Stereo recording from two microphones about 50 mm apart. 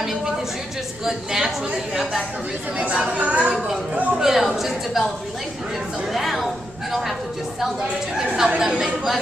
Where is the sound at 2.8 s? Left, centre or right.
Right.